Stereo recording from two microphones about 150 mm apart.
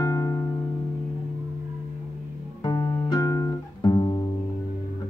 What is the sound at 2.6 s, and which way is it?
Music, 25° left (ahead or behind).